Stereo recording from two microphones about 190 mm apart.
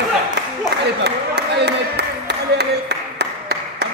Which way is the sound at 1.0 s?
60° right (ahead or behind).